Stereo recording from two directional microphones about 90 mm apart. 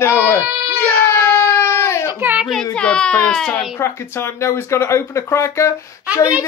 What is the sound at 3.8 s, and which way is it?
Speech, 30° left (ahead or behind).